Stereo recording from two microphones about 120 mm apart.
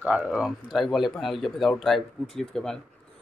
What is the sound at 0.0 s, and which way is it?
Speech, 10° right (ahead or behind).